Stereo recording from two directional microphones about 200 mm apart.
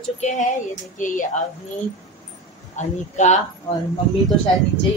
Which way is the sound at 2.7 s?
35° left (ahead or behind).